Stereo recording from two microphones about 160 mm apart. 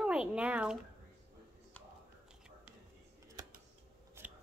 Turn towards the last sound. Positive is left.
turn(degrees=-10)  # may be behind; listen again after turning